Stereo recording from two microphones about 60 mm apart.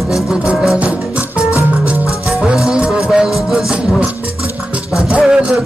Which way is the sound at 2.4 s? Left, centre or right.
Centre.